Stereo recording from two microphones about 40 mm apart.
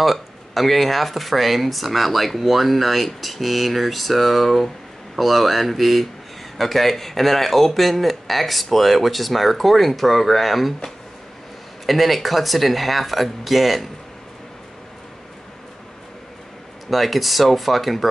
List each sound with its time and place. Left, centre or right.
0.0 s speech: centre
11.8 s speech: centre
16.9 s speech: centre